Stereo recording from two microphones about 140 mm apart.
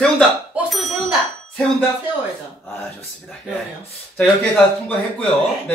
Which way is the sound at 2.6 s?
5° left (ahead or behind).